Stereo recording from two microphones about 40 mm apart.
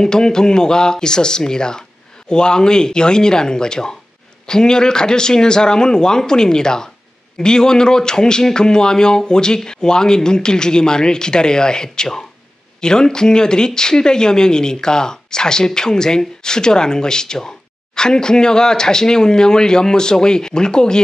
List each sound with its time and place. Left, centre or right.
0.0 s a man's voice: centre